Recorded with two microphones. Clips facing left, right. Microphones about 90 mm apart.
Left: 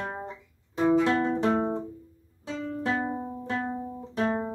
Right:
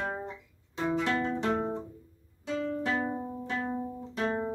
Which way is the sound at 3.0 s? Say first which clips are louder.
Left 2 dB; 20° left (ahead or behind).